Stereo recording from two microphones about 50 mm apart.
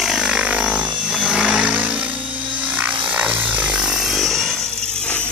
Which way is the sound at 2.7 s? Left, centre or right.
Right.